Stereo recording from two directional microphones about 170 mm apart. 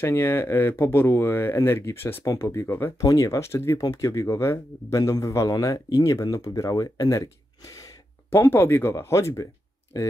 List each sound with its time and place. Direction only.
0.0 s speech: 15° left (ahead or behind)